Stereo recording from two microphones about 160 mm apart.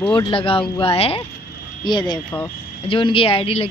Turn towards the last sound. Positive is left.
turn(degrees=35)  # may be behind; listen again after turning